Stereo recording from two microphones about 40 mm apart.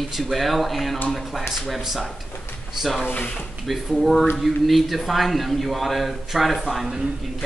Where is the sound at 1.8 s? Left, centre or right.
Centre.